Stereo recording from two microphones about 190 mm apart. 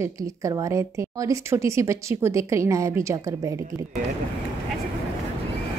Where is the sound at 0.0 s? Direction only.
15° right (ahead or behind).